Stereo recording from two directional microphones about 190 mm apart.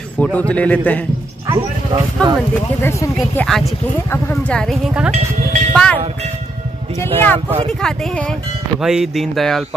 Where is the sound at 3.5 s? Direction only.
Centre (ahead or behind).